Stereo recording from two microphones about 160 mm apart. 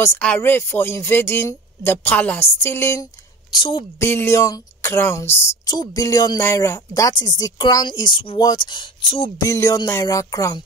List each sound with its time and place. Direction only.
0.0 s speech: 10° left (ahead or behind)
3.5 s speech: 30° left (ahead or behind)
4.0 s speech: 15° left (ahead or behind); by 9.3 s 30° left (ahead or behind)
9.4 s speech: 20° left (ahead or behind)